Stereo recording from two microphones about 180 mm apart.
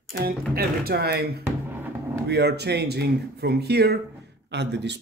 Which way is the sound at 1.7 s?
10° right (ahead or behind).